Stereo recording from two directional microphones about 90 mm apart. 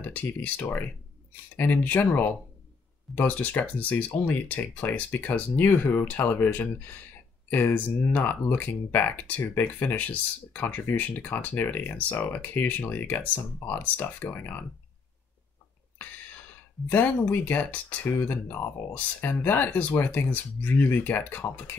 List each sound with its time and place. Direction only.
0.0 s speech: 20° left (ahead or behind)
3.2 s speech: 15° left (ahead or behind)
16.9 s speech: 20° left (ahead or behind)